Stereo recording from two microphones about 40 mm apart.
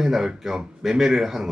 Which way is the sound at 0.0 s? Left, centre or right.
Centre.